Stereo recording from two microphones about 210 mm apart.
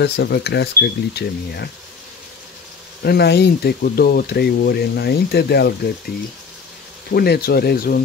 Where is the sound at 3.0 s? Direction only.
50° left (ahead or behind).